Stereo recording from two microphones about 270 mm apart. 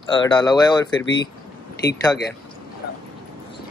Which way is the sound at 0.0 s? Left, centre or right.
Centre.